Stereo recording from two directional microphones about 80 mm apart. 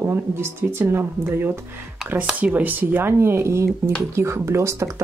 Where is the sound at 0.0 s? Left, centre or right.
Right.